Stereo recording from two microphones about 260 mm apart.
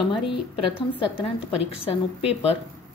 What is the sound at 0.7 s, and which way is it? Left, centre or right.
A woman's voice, centre.